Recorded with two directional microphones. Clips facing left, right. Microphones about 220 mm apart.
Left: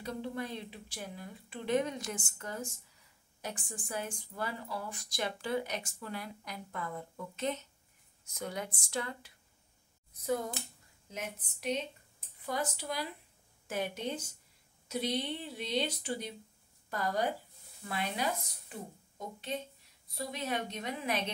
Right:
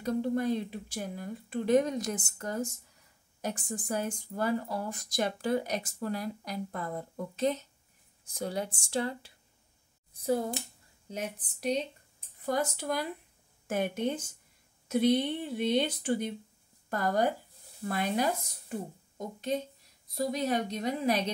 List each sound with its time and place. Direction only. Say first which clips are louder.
0.0 s speech: right 9 dB; 45° right (ahead or behind)
12.4 s speech: right 6 dB; 50° right (ahead or behind)